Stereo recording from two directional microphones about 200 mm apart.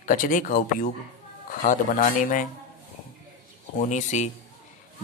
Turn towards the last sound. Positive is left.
turn(degrees=35)  # may be behind; listen again after turning